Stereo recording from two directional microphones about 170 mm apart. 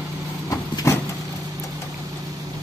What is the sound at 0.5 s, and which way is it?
Vehicle, 15° left (ahead or behind).